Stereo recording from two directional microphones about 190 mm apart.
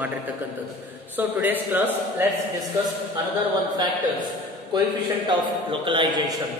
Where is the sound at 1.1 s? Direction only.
10° right (ahead or behind).